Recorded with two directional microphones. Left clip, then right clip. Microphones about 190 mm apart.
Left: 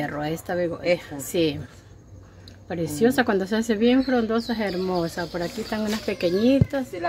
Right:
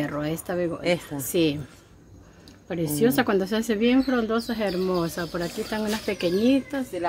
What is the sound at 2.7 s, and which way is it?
Speech, 5° right (ahead or behind).